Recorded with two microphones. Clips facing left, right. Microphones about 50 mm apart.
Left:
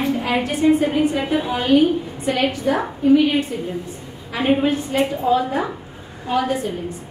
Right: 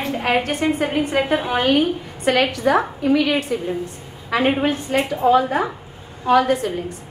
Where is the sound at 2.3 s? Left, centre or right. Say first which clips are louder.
Right 3 dB; right.